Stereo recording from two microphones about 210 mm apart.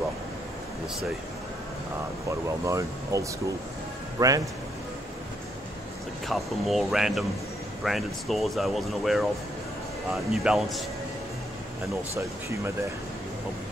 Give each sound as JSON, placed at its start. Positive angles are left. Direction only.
{"t": 2.6, "sound": "speech", "side_deg": -15}
{"t": 6.2, "sound": "speech", "side_deg": 0}
{"t": 12.2, "sound": "speech", "side_deg": -15}